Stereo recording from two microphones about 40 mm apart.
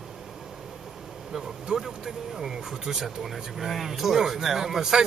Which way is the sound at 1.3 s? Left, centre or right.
Centre.